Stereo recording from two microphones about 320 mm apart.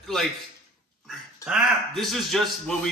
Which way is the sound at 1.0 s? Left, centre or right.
Centre.